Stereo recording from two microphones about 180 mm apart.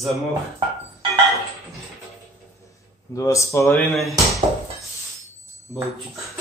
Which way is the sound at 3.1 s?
15° left (ahead or behind).